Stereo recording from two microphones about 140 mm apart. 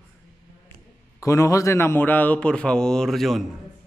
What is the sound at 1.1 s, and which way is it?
A man's voice, 20° left (ahead or behind).